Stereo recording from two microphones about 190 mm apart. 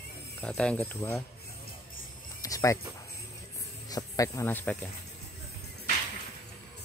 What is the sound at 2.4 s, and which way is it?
Speech, 15° left (ahead or behind).